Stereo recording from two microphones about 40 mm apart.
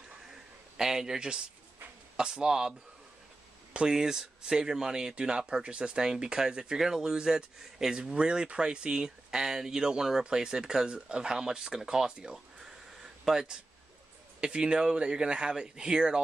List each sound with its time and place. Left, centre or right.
0.7 s speech: centre
3.9 s speech: centre
13.0 s a sound: centre
14.4 s speech: right